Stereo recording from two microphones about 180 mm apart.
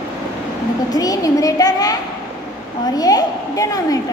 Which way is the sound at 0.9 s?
20° left (ahead or behind).